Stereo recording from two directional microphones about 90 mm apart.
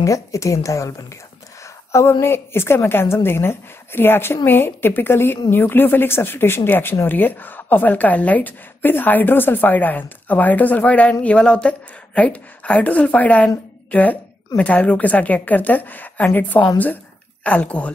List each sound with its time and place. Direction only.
0.0 s a woman's voice: 35° left (ahead or behind); by 13.5 s 15° left (ahead or behind)
14.6 s speech: 15° left (ahead or behind)